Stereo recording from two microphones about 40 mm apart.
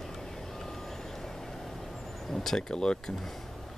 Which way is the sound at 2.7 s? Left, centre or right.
Centre.